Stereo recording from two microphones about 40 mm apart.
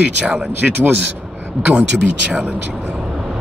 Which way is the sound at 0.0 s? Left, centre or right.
Right.